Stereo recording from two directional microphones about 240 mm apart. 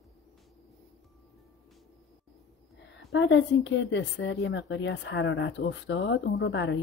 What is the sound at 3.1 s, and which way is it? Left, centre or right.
Speech, left.